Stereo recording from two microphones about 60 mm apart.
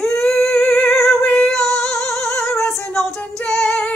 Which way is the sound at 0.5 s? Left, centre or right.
Left.